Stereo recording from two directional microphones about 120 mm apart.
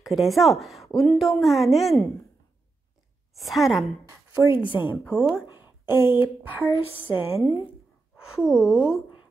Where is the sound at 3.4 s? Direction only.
Centre (ahead or behind).